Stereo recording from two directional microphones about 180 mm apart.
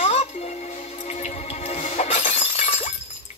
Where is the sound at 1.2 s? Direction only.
35° left (ahead or behind).